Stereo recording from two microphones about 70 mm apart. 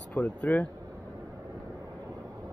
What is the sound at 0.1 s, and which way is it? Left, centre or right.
Speech, left.